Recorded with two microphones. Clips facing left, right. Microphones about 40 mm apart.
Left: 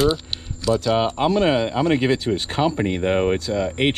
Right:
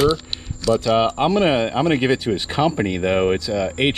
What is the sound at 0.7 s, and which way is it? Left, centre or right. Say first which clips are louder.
Speech: right 2 dB; right.